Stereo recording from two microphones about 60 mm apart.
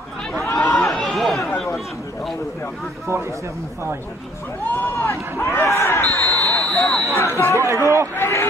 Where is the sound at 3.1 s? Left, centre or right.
Right.